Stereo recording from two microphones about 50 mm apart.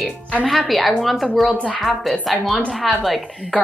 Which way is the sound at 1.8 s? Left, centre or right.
Centre.